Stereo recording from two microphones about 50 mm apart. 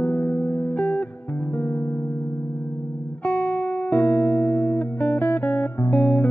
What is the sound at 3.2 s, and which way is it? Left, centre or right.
Music, left.